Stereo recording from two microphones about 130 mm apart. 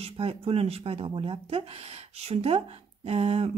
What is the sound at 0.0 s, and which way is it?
Speech, 50° right (ahead or behind).